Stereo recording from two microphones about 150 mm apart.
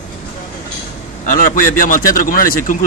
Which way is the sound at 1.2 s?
65° left (ahead or behind).